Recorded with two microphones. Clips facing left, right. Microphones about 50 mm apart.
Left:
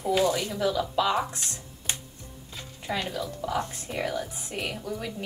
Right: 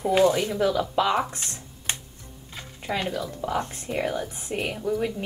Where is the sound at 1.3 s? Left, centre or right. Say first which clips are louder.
Right 1 dB; right.